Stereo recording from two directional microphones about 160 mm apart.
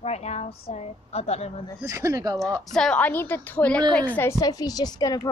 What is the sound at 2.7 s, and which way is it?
A woman's voice, 5° left (ahead or behind).